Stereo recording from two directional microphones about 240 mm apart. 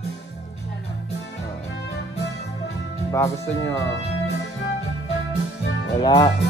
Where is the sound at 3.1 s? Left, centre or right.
Centre.